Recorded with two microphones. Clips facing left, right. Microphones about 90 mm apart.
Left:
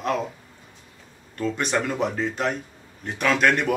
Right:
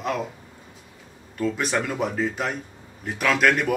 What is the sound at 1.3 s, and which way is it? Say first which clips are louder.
A man's voice: even; 5° right (ahead or behind).